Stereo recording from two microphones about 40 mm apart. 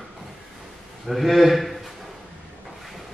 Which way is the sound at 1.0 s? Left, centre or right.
Centre.